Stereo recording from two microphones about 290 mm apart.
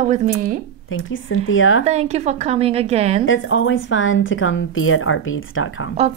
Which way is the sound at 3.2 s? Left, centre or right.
Left.